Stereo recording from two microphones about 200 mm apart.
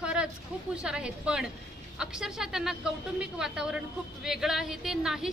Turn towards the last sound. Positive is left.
turn(degrees=0)  # may be behind; listen again after turning